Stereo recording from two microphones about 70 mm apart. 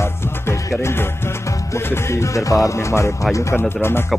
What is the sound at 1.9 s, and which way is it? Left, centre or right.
Music, left.